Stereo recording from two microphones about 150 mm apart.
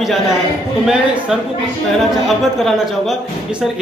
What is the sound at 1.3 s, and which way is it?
A man's voice, 5° right (ahead or behind).